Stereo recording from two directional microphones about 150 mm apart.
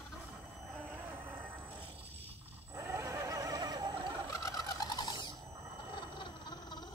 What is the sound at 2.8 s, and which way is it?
Neigh, 15° right (ahead or behind).